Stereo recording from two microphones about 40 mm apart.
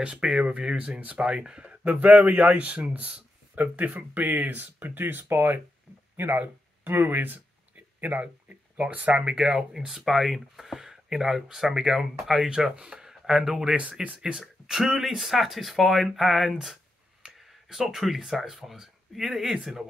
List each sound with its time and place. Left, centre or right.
0.0 s speech: right
2.0 s a man's voice: right
6.3 s a sound: right
8.7 s a man's voice: right
9.2 s speech: centre
10.0 s speech: centre
12.7 s speech: right
13.0 s speech: centre
17.2 s a sound: centre
18.6 s speech: centre